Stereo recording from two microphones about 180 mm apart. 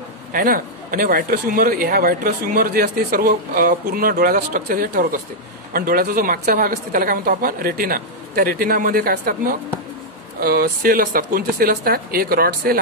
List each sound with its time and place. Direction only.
0.3 s a man's voice: 50° right (ahead or behind)